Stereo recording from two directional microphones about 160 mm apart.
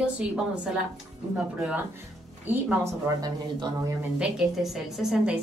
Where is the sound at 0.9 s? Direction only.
Centre (ahead or behind).